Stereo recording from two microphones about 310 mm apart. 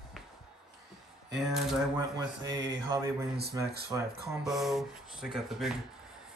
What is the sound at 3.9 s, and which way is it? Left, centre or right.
Speech, centre.